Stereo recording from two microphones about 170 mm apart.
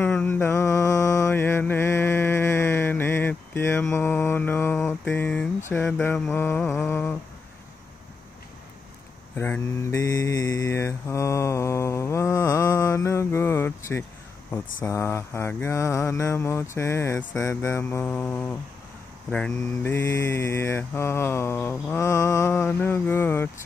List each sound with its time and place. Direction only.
0.0 s mantra: 10° left (ahead or behind)
9.4 s mantra: 15° left (ahead or behind)